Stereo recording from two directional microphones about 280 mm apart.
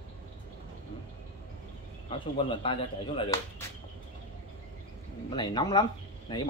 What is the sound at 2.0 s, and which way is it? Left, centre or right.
Speech, centre.